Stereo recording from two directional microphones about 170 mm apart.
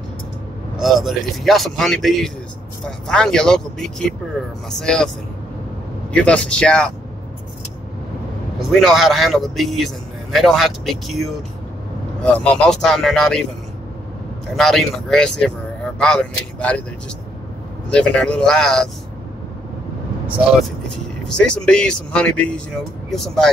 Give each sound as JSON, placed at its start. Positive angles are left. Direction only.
{"t": 0.7, "sound": "speech", "side_deg": 0}
{"t": 6.1, "sound": "speech", "side_deg": 5}
{"t": 8.5, "sound": "speech", "side_deg": 0}
{"t": 14.5, "sound": "speech", "side_deg": 0}
{"t": 17.8, "sound": "speech", "side_deg": 5}
{"t": 20.6, "sound": "speech", "side_deg": 5}